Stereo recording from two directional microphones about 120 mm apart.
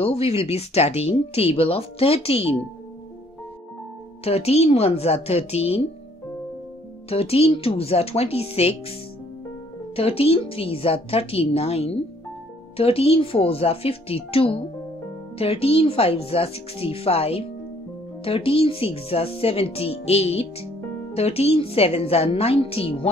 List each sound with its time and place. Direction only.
0.0 s speech: 55° left (ahead or behind)
4.2 s speech: 60° left (ahead or behind)
7.1 s speech: 55° left (ahead or behind)
9.9 s speech: 55° left (ahead or behind)